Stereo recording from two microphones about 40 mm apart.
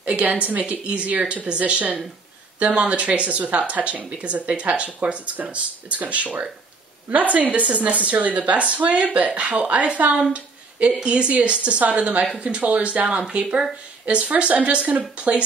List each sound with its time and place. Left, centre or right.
0.0 s a woman's voice: right